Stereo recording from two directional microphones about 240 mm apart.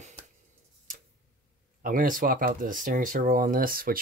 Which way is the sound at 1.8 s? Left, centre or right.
Right.